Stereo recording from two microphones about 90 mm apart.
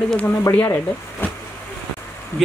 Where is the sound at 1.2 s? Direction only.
25° left (ahead or behind).